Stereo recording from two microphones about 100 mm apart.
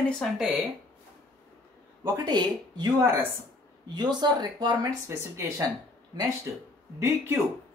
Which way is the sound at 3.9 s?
45° right (ahead or behind).